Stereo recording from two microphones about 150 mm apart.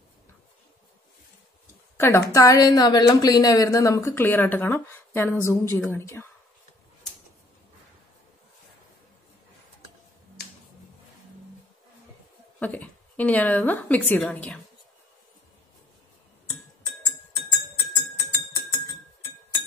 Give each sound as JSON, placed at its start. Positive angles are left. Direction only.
{"t": 2.0, "sound": "a woman's voice", "side_deg": 20}
{"t": 12.5, "sound": "a woman's voice", "side_deg": 10}
{"t": 17.5, "sound": "music", "side_deg": 20}